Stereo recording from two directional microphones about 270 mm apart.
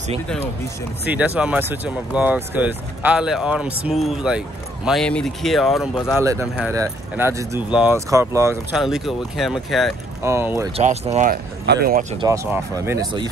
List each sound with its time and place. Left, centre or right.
1.0 s speech: centre
6.1 s speech: centre
10.8 s speech: right
12.3 s speech: centre